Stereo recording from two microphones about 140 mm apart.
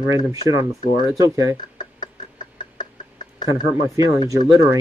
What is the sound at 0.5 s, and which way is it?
Speech, 20° right (ahead or behind).